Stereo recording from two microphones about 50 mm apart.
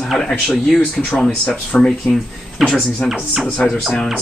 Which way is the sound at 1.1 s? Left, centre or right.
Centre.